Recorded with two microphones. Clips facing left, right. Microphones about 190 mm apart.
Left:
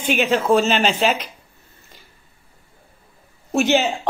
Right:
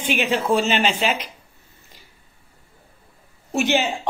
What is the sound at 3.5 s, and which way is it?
Speech, 45° left (ahead or behind).